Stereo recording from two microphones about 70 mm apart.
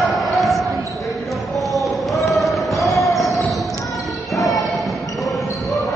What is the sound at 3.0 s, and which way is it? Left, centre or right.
Basketball bounce, centre.